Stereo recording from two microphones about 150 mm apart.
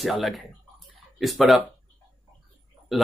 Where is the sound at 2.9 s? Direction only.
Centre (ahead or behind).